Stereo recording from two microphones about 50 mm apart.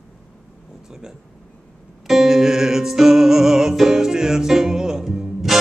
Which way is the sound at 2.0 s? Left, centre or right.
Centre.